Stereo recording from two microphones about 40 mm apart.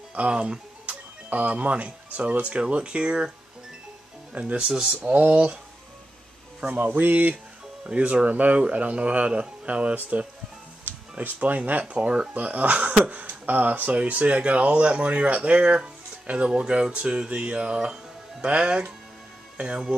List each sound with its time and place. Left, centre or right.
0.3 s speech: right
4.3 s speech: right
5.0 s speech: right
6.8 s speech: right
7.8 s speech: right
9.9 s speech: right
11.8 s speech: right
12.4 s speech: right